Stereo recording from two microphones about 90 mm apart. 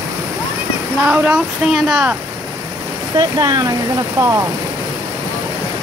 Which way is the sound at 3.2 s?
45° right (ahead or behind).